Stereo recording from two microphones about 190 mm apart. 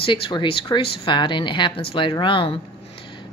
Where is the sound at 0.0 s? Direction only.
25° left (ahead or behind).